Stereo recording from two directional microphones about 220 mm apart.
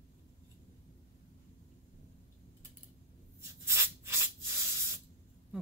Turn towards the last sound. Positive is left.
turn(degrees=-10)  # may be behind; listen again after turning